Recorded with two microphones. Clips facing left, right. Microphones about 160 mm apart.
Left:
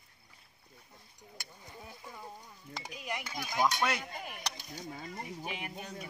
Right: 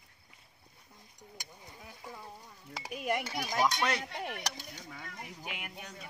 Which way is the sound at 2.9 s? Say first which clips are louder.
Right 7 dB; 55° right (ahead or behind).